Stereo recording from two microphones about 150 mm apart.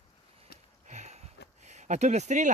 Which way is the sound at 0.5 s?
90° left.